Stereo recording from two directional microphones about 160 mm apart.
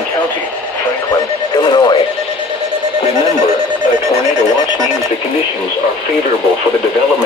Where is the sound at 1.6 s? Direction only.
30° left (ahead or behind).